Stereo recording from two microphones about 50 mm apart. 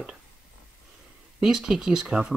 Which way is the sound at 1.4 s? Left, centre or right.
Centre.